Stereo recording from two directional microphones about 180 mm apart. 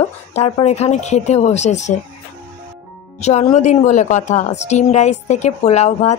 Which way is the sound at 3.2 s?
40° left (ahead or behind).